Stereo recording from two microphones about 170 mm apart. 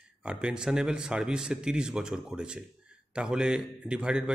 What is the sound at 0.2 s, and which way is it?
A man's voice, 5° right (ahead or behind).